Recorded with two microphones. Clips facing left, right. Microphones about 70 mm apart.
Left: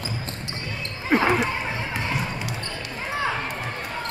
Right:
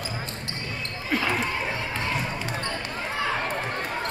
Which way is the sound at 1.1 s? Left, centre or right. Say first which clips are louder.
Left 6 dB; left.